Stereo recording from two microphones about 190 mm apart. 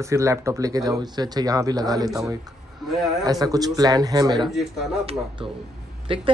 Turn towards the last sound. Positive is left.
turn(degrees=-25)  # may be behind; listen again after turning